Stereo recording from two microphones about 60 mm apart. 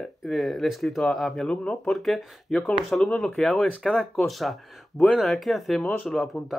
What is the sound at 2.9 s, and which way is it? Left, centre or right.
Speech, centre.